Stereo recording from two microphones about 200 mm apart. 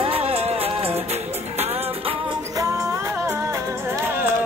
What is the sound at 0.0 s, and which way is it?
Music, 30° right (ahead or behind).